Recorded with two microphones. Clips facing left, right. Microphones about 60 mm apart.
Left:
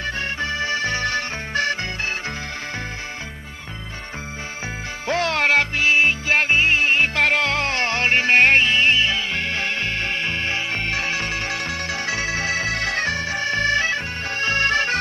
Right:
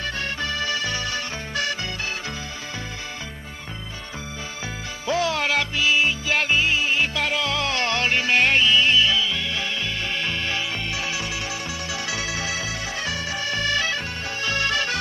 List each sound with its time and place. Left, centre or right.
0.0 s music: left
5.0 s music: left
13.1 s music: left